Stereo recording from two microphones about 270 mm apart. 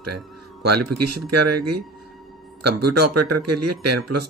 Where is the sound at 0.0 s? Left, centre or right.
Right.